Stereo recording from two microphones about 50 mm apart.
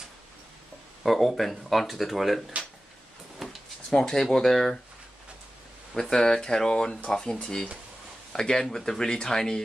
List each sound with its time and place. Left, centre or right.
1.0 s speech: centre
3.4 s a sound: centre
3.9 s speech: centre
5.9 s speech: centre